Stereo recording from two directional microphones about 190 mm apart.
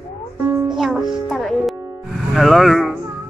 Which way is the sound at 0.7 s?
Centre (ahead or behind).